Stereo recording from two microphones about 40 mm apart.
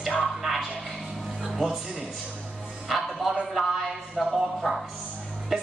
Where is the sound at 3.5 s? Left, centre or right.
Centre.